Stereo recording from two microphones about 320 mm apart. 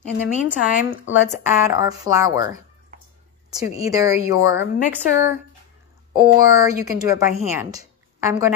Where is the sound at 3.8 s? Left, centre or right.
Centre.